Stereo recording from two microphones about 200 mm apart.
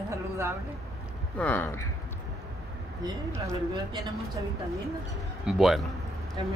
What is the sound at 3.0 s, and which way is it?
Speech, 15° right (ahead or behind).